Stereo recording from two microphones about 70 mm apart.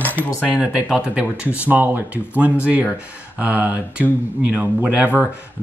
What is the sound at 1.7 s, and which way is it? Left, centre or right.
Speech, right.